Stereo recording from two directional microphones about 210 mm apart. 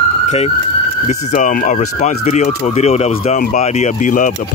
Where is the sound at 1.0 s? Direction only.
35° left (ahead or behind).